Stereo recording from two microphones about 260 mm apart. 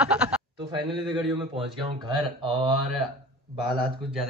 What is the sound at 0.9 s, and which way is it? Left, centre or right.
Speech, centre.